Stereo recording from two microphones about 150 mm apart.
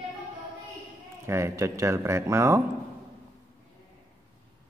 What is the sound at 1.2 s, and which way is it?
Speech, 20° right (ahead or behind).